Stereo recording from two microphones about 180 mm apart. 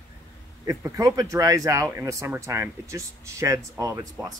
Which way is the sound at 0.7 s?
15° right (ahead or behind).